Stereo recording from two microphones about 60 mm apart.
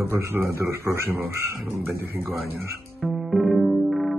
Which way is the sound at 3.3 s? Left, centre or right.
Centre.